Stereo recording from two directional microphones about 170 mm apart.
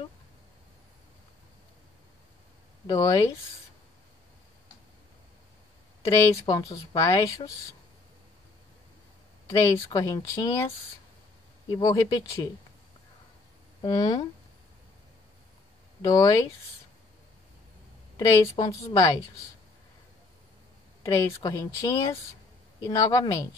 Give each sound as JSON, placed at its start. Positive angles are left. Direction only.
{"t": 2.9, "sound": "speech", "side_deg": 20}
{"t": 6.0, "sound": "a woman's voice", "side_deg": 20}
{"t": 9.9, "sound": "speech", "side_deg": 20}
{"t": 11.7, "sound": "speech", "side_deg": 20}
{"t": 13.7, "sound": "speech", "side_deg": 25}
{"t": 16.0, "sound": "speech", "side_deg": 20}
{"t": 18.1, "sound": "a woman's voice", "side_deg": 20}
{"t": 21.0, "sound": "speech", "side_deg": 15}